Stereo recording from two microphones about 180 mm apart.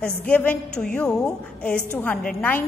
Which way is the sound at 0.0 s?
10° left (ahead or behind).